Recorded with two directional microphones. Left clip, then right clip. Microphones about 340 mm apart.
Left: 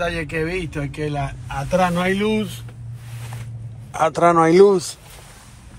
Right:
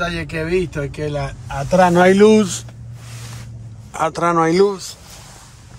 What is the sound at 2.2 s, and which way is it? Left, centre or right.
Speech, right.